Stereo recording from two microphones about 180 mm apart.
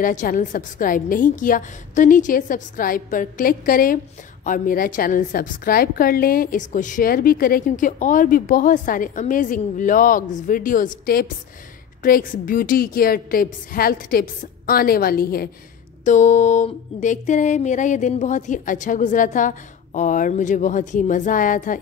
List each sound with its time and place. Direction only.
0.0 s a woman's voice: 45° left (ahead or behind)
16.0 s a woman's voice: 40° left (ahead or behind)